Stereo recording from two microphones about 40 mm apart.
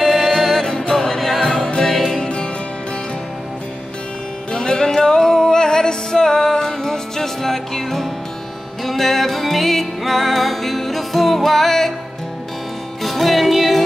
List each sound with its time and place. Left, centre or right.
0.0 s music: centre; by 2.4 s left
4.5 s music: centre
13.0 s music: centre